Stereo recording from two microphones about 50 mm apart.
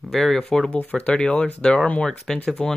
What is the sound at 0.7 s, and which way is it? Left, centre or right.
Speech, left.